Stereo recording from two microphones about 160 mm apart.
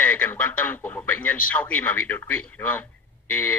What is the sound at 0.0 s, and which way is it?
Speech, 10° left (ahead or behind).